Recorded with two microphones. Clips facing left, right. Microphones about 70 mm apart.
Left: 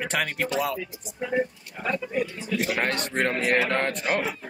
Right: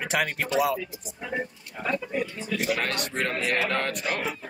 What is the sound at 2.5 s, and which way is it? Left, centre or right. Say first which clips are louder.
A man's voice: even; left.